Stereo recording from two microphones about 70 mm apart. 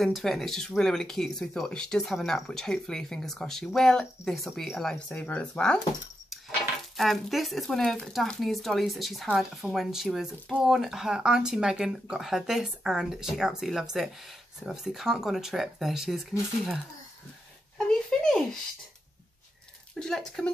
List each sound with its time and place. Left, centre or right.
0.0 s speech: centre
5.1 s speech: centre
7.0 s speech: centre
17.7 s a sound: centre
20.0 s speech: centre